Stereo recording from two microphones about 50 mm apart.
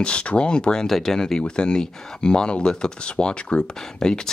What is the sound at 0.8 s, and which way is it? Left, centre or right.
Speech, centre.